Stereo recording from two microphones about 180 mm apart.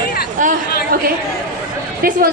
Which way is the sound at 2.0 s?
50° right (ahead or behind).